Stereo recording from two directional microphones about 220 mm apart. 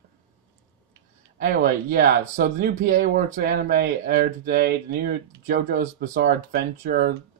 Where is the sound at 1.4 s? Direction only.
40° right (ahead or behind).